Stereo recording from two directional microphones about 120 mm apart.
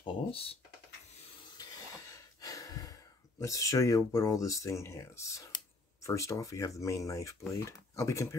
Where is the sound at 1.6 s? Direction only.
30° left (ahead or behind).